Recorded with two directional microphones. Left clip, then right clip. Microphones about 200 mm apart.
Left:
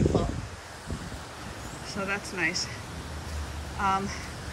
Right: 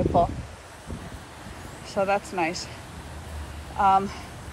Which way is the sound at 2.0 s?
15° right (ahead or behind).